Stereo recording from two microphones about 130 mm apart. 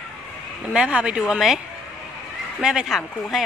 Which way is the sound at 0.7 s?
10° right (ahead or behind).